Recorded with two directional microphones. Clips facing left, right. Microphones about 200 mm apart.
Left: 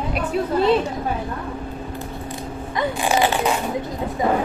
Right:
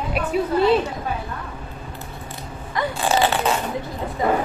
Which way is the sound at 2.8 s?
15° left (ahead or behind).